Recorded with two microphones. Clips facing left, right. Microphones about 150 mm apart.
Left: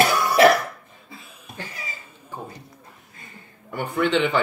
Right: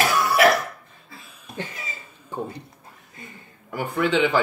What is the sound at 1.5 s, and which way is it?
Cough, 20° right (ahead or behind).